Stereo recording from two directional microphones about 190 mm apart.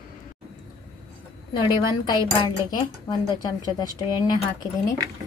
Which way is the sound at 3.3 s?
20° left (ahead or behind).